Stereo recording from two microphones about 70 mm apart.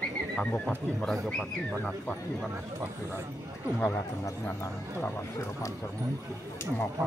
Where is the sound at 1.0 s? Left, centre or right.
Centre.